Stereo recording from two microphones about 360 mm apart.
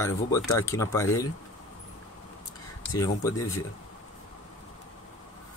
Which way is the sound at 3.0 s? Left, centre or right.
Centre.